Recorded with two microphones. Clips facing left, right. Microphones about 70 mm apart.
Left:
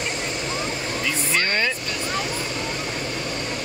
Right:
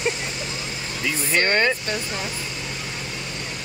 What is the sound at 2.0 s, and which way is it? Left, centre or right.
Vehicle, left.